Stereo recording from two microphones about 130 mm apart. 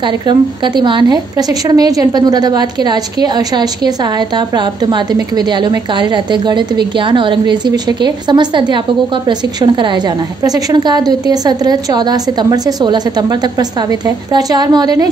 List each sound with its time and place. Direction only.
0.0 s a woman's voice: 35° right (ahead or behind)